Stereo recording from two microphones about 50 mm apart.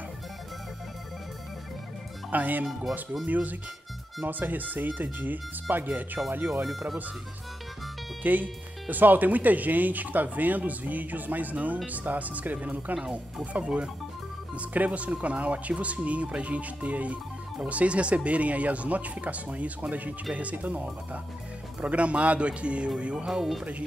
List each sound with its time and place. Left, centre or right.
2.3 s speech: right
6.6 s speech: centre
8.2 s speech: right
23.2 s speech: centre